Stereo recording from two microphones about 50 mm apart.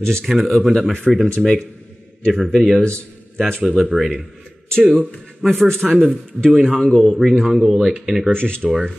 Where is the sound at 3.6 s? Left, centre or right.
Centre.